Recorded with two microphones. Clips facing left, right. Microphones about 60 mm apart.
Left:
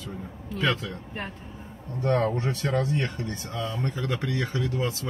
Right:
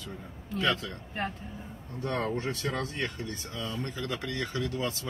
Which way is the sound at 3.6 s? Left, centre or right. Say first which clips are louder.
Left 5 dB; left.